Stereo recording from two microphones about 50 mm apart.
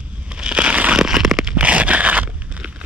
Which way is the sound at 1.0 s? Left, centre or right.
Centre.